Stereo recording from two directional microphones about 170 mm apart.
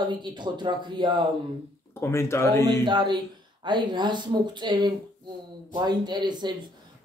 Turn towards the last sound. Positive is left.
turn(degrees=-25)  # may be behind; listen again after turning